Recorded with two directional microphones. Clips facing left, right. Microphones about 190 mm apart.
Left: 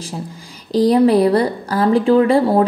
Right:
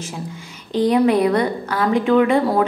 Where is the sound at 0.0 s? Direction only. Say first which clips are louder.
Left 2 dB; 35° left (ahead or behind).